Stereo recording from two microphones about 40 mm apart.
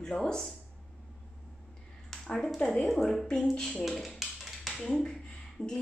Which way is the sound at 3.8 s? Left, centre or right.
Centre.